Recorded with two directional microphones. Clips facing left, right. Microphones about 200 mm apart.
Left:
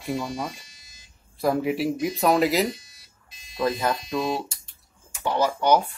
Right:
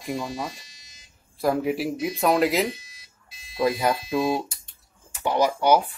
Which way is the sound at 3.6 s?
10° right (ahead or behind).